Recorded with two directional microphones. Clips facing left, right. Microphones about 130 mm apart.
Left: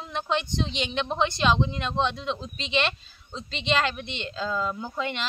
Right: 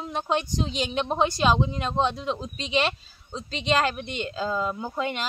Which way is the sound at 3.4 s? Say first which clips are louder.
Right 2 dB; 40° right (ahead or behind).